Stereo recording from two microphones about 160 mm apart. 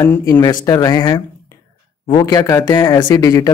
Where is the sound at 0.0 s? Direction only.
15° left (ahead or behind).